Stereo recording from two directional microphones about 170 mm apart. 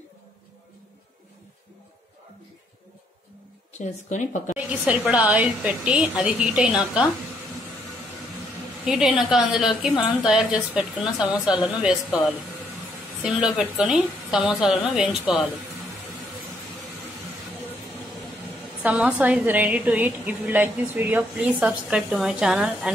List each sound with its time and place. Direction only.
3.7 s speech: 45° left (ahead or behind)
4.6 s a woman's voice: 10° right (ahead or behind)
8.8 s a woman's voice: 5° right (ahead or behind)
13.2 s a woman's voice: 5° right (ahead or behind)
18.8 s a woman's voice: 10° right (ahead or behind)